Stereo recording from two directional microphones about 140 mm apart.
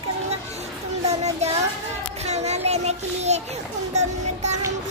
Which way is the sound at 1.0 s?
50° right (ahead or behind).